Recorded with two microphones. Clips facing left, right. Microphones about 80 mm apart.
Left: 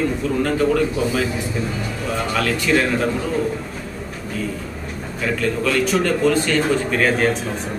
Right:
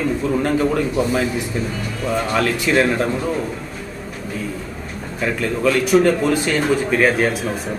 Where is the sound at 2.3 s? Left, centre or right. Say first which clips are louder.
Even; centre.